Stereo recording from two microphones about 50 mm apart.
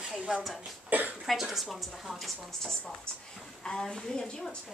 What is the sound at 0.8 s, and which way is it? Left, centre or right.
Speech, right.